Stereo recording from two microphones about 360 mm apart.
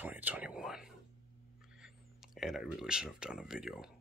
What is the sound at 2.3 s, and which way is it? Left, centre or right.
Speech, centre.